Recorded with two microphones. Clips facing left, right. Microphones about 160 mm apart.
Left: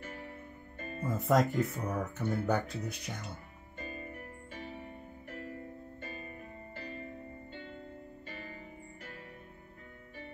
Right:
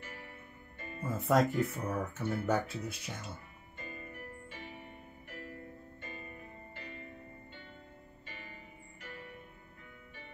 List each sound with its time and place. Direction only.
0.7 s music: 40° left (ahead or behind)
1.0 s speech: centre (ahead or behind)
3.7 s music: 40° left (ahead or behind)
6.8 s music: 40° left (ahead or behind)
8.3 s music: 45° left (ahead or behind)